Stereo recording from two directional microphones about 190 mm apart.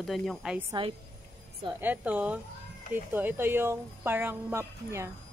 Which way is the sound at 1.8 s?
10° right (ahead or behind).